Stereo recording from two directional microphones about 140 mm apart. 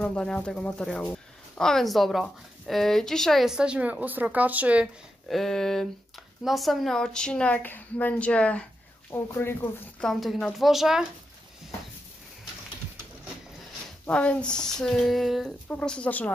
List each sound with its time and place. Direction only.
0.0 s speech: 5° left (ahead or behind); by 4.8 s 10° right (ahead or behind)
5.3 s a woman's voice: 5° left (ahead or behind)
10.0 s speech: centre (ahead or behind)
14.0 s a woman's voice: 10° left (ahead or behind)